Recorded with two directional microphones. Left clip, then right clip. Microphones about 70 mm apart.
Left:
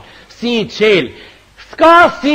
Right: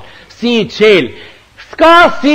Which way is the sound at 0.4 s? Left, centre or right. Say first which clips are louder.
Right 4 dB; left.